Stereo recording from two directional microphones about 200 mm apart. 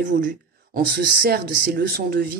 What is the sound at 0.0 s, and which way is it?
Speech, 40° right (ahead or behind).